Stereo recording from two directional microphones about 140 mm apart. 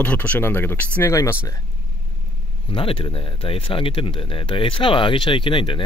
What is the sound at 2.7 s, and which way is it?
Speech, 40° left (ahead or behind).